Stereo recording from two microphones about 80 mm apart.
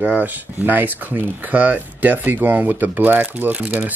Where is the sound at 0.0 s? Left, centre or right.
Centre.